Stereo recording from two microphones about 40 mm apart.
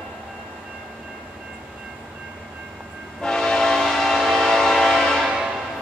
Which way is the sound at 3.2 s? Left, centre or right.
Centre.